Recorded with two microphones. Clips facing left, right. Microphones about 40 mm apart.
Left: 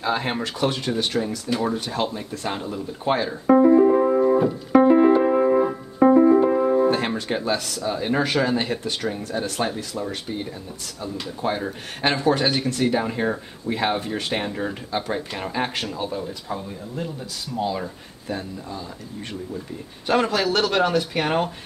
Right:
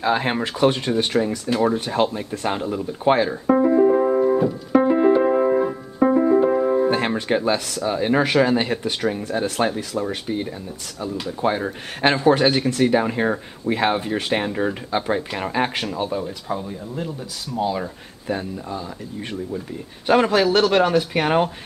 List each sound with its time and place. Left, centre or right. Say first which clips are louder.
0.0 s speech: right 3 dB; centre
3.4 s piano: left 2 dB; centre
7.2 s speech: right 4 dB; right
11.6 s speech: right 4 dB; right
14.5 s speech: right 4 dB; right; by 17.8 s centre
20.1 s speech: right 4 dB; centre